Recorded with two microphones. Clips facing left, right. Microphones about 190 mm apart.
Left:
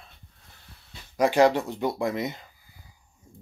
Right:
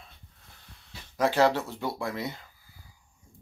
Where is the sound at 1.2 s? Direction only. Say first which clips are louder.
Left 4 dB; 15° left (ahead or behind).